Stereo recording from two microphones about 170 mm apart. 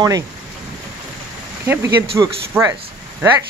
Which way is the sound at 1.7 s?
15° right (ahead or behind).